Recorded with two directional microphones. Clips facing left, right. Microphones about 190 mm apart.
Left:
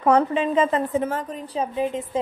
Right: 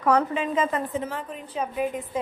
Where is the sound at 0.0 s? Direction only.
30° left (ahead or behind).